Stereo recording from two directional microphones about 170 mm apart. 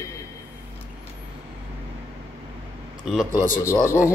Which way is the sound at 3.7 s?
15° left (ahead or behind).